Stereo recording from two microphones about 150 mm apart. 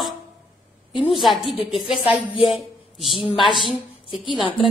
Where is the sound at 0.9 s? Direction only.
35° left (ahead or behind).